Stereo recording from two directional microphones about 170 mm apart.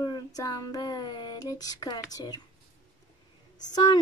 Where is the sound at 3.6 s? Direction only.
25° left (ahead or behind).